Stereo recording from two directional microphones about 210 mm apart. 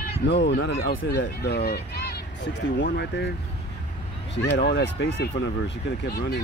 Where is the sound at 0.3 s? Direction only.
55° left (ahead or behind).